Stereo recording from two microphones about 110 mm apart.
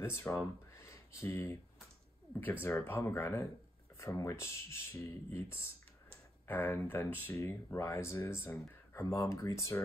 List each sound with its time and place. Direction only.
0.0 s speech: 25° left (ahead or behind)